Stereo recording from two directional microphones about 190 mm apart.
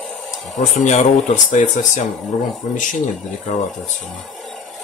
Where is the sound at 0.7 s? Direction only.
40° left (ahead or behind).